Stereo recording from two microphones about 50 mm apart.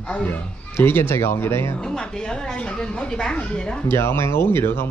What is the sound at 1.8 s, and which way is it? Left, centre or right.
A woman's voice, centre.